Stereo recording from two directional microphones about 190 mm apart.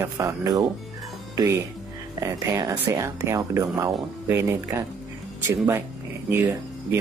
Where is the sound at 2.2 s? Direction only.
15° right (ahead or behind).